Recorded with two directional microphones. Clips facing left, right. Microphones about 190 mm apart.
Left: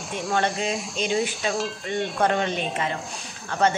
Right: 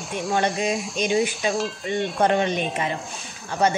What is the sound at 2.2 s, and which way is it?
Speech, 15° right (ahead or behind).